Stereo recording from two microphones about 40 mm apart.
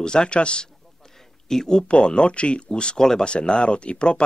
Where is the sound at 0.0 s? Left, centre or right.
Left.